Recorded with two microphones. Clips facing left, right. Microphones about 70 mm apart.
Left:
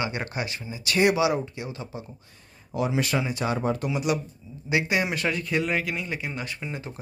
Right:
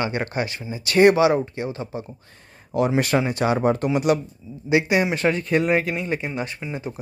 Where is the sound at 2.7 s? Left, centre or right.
Right.